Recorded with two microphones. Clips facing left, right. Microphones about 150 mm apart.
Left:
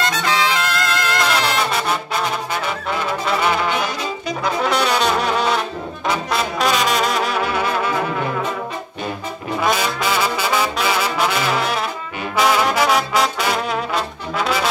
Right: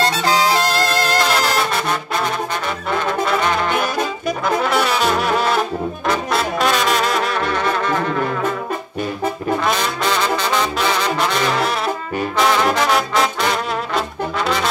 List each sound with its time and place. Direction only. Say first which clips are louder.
0.0 s music: right 3 dB; 35° right (ahead or behind)
1.6 s brass instrument: even; centre (ahead or behind)
4.6 s brass instrument: left 2 dB; centre (ahead or behind)
9.6 s brass instrument: even; 5° left (ahead or behind)
12.4 s trombone: even; 5° left (ahead or behind)